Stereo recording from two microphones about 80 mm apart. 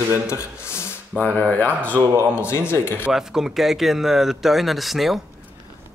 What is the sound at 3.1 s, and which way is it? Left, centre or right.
Speech, centre.